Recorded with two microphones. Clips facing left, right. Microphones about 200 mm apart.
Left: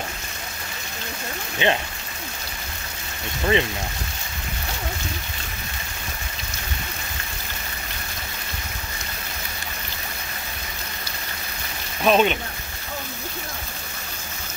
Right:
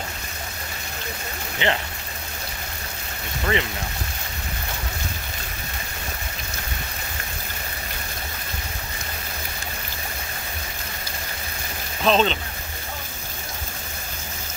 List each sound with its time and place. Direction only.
1.6 s speech: 20° left (ahead or behind)
3.5 s speech: 20° left (ahead or behind)
12.0 s speech: 10° left (ahead or behind)